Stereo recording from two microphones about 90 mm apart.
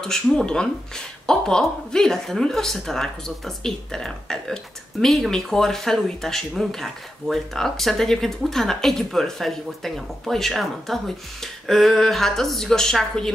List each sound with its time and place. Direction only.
0.0 s speech: 5° left (ahead or behind)